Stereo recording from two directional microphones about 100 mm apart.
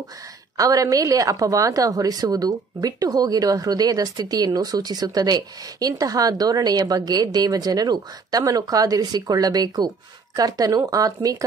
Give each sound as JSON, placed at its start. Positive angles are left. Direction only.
{"t": 0.6, "sound": "a woman's voice", "side_deg": -35}